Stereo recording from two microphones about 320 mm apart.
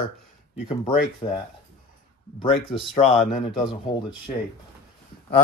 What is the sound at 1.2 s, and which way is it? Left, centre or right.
Speech, centre.